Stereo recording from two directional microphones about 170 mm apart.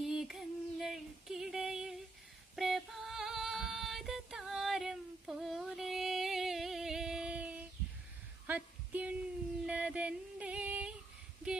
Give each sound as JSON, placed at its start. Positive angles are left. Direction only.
{"t": 0.0, "sound": "female singing", "side_deg": 0}
{"t": 8.5, "sound": "a sound", "side_deg": -10}
{"t": 9.7, "sound": "female singing", "side_deg": -5}